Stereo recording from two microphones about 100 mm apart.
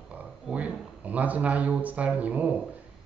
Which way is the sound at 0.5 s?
10° right (ahead or behind).